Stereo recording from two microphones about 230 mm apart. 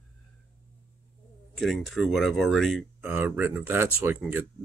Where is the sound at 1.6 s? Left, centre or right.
Centre.